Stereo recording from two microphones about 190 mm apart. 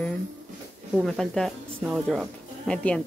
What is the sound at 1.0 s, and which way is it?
Speech, centre (ahead or behind).